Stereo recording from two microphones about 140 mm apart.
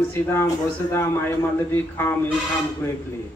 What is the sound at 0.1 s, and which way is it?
A man's voice, 15° left (ahead or behind).